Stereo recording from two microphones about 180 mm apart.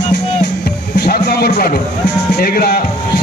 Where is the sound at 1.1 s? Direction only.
60° left (ahead or behind).